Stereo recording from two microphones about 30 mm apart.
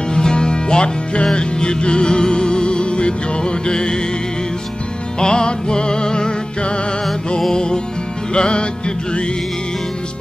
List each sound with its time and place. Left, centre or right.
0.1 s music: left
5.2 s music: left